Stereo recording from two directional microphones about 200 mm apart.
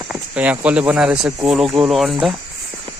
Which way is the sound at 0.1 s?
5° right (ahead or behind).